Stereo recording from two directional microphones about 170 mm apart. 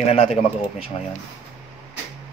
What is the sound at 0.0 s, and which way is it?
Speech, 35° left (ahead or behind).